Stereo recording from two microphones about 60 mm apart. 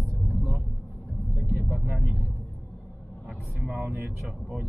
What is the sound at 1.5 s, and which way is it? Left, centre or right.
Speech, right.